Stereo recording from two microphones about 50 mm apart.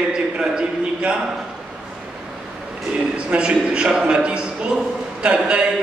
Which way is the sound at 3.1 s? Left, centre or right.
Right.